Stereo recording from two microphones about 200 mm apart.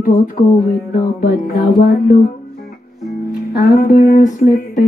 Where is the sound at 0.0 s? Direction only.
45° left (ahead or behind).